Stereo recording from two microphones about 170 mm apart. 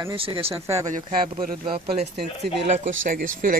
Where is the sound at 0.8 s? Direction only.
45° right (ahead or behind).